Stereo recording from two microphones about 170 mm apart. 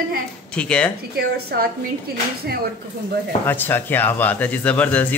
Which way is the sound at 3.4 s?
15° left (ahead or behind).